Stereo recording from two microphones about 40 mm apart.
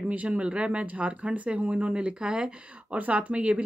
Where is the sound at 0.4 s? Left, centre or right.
Right.